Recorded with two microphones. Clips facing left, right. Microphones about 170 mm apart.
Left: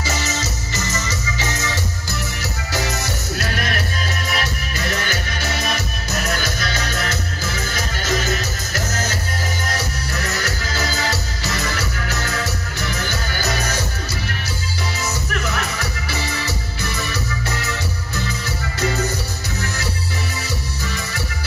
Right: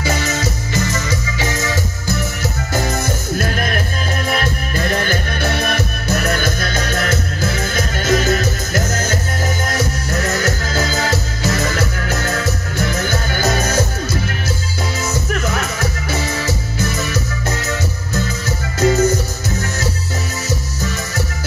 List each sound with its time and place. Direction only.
0.0 s music: 55° right (ahead or behind)
15.5 s music: 45° right (ahead or behind)